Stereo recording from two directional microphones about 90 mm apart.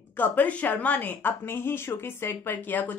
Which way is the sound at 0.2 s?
15° left (ahead or behind).